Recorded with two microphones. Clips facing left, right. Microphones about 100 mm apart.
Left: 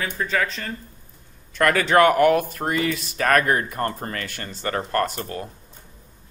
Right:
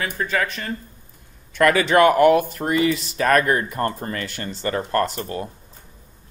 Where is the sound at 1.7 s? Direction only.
15° right (ahead or behind).